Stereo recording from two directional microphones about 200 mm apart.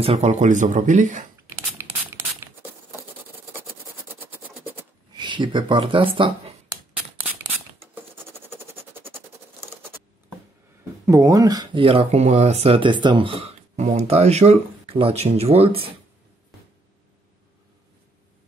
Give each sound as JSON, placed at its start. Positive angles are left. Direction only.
{"t": 0.0, "sound": "speech", "side_deg": -30}
{"t": 5.1, "sound": "speech", "side_deg": -25}
{"t": 11.1, "sound": "speech", "side_deg": -15}